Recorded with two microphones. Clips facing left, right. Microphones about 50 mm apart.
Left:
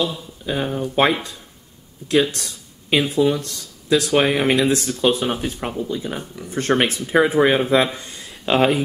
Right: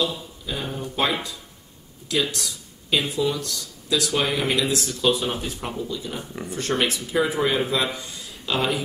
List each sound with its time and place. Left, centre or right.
0.0 s a man's voice: left